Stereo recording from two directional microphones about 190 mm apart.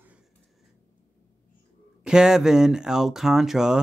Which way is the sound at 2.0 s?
5° right (ahead or behind).